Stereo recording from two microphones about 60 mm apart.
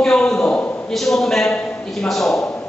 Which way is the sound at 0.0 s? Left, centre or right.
Centre.